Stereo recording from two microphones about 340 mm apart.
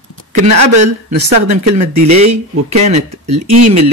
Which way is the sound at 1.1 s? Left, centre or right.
Right.